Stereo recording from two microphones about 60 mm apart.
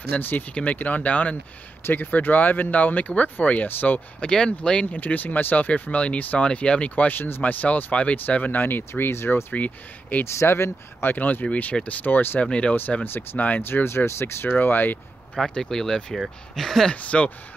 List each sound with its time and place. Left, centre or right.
0.1 s speech: left
4.3 s speech: centre
4.8 s speech: left
7.2 s speech: left
7.6 s speech: left
9.5 s speech: left
10.2 s speech: left
11.1 s speech: left
12.4 s speech: centre
13.0 s speech: left
15.3 s speech: centre
16.9 s speech: left